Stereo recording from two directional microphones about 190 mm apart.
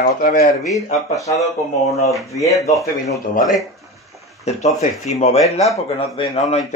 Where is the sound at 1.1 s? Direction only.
15° left (ahead or behind).